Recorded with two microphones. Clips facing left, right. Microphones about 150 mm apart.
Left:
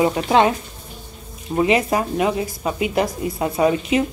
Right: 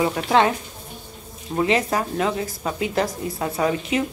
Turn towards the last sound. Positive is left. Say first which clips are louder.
# left 4 dB
turn(degrees=20)  # may be behind; listen again after turning